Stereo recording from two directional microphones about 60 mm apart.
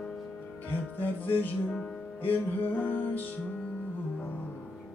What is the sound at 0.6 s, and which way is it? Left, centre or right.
Music, left.